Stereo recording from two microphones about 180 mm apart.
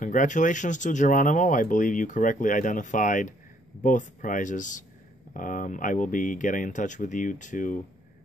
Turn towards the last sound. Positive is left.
turn(degrees=45)  # may be behind; listen again after turning